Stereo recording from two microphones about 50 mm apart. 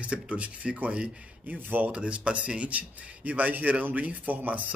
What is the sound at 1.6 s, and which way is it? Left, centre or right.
A man's voice, right.